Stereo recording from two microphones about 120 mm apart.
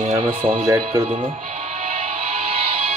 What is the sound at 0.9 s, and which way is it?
Speech, 45° right (ahead or behind).